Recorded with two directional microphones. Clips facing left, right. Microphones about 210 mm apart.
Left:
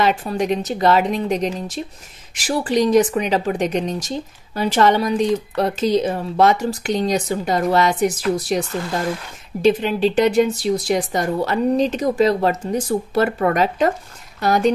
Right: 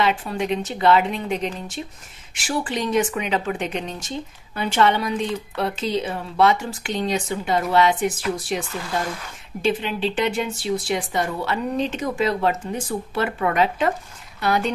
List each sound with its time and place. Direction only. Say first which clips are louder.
0.0 s speech: left 3 dB; 40° left (ahead or behind)